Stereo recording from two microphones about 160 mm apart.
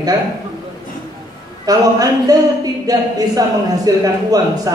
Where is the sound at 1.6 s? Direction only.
20° right (ahead or behind).